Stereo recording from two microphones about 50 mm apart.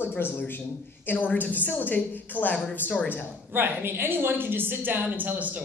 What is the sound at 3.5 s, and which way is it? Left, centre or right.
A woman's voice, right.